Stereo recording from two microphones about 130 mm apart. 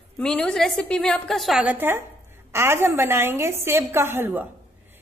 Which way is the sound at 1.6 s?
15° right (ahead or behind).